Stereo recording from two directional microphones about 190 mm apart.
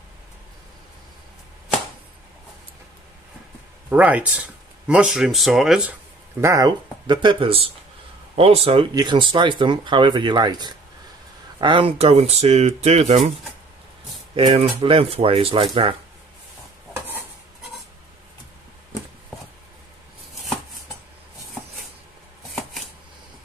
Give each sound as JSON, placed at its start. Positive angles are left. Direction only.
{"t": 3.9, "sound": "speech", "side_deg": -10}
{"t": 6.4, "sound": "speech", "side_deg": -20}
{"t": 14.3, "sound": "speech", "side_deg": -30}